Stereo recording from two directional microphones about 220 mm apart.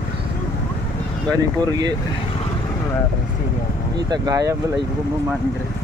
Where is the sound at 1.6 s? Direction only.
15° right (ahead or behind).